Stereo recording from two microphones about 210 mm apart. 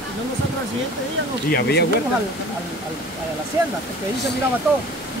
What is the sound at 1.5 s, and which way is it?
Speech, 50° left (ahead or behind).